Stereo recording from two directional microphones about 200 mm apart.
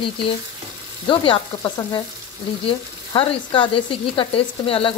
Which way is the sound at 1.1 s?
25° left (ahead or behind).